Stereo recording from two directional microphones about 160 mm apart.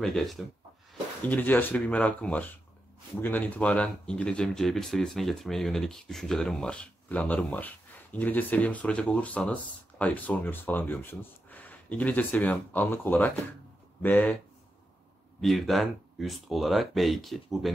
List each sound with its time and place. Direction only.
0.0 s speech: centre (ahead or behind)
15.4 s speech: centre (ahead or behind)